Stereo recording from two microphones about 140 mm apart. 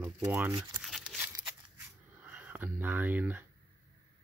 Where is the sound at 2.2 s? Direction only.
15° right (ahead or behind).